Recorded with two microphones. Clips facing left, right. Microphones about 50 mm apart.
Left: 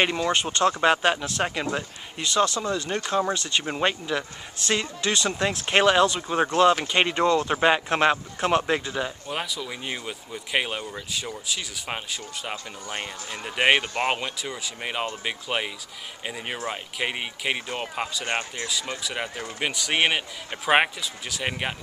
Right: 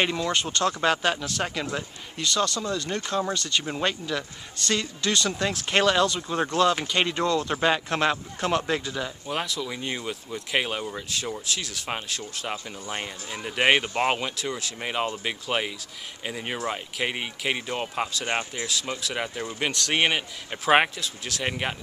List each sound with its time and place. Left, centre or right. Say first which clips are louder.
0.0 s speech: left 2 dB; centre
9.3 s speech: right 1 dB; centre
18.2 s speech: even; centre